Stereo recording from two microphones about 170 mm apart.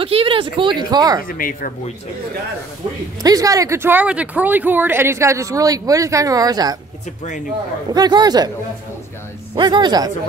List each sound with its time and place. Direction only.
0.0 s speech: 30° right (ahead or behind)
1.2 s speech: 55° left (ahead or behind)
3.2 s speech: 20° right (ahead or behind)
7.9 s speech: 25° right (ahead or behind)
9.6 s speech: 25° right (ahead or behind)